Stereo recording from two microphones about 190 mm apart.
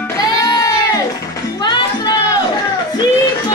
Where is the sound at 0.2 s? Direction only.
20° left (ahead or behind).